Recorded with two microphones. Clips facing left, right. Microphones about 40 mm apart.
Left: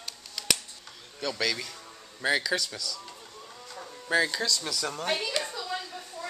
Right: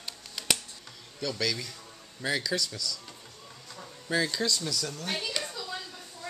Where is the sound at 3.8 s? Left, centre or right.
Centre.